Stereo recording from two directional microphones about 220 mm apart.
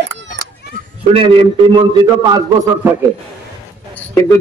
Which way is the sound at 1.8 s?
20° right (ahead or behind).